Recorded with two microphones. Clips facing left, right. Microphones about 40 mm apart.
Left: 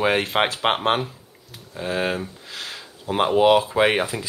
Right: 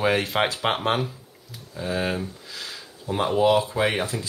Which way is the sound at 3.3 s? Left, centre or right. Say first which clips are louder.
Left 4 dB; left.